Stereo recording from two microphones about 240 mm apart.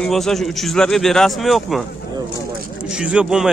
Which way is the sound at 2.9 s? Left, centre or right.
Centre.